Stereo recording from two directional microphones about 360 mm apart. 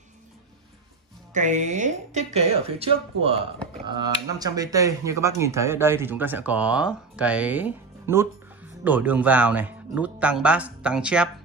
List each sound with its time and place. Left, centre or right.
1.3 s speech: centre